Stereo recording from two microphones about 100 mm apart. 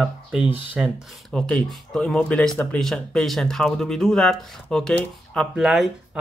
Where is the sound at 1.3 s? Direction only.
10° left (ahead or behind).